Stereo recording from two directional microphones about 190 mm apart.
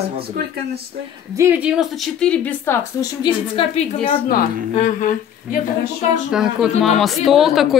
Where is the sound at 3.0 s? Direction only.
25° left (ahead or behind).